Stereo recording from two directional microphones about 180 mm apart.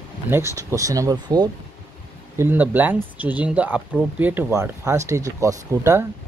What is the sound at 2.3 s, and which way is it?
Speech, 10° right (ahead or behind).